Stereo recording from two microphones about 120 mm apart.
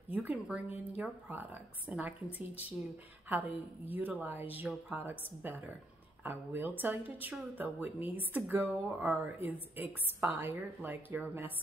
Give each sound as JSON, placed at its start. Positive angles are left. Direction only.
{"t": 0.1, "sound": "speech", "side_deg": -10}